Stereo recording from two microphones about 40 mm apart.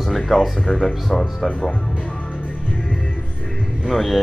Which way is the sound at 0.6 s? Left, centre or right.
Centre.